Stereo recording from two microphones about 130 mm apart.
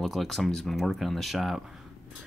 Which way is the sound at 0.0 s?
Centre (ahead or behind).